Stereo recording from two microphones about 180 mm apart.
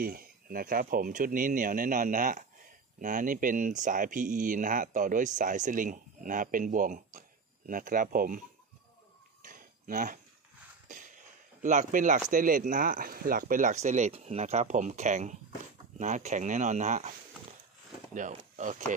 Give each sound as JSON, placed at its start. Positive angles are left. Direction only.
{"t": 0.0, "sound": "speech", "side_deg": -55}
{"t": 9.4, "sound": "a sound", "side_deg": -50}
{"t": 11.6, "sound": "speech", "side_deg": -45}
{"t": 18.6, "sound": "speech", "side_deg": -45}